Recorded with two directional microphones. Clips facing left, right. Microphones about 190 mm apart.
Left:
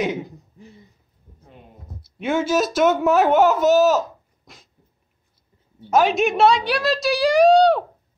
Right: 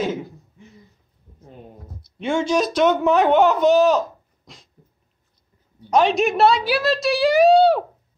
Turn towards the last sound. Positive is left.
turn(degrees=-5)  # may be behind; listen again after turning